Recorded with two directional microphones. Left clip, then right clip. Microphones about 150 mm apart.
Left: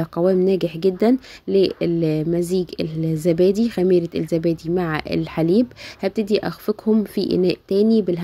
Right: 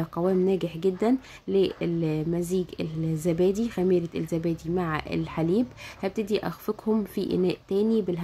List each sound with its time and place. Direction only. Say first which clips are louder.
0.0 s speech: left 7 dB; 25° left (ahead or behind)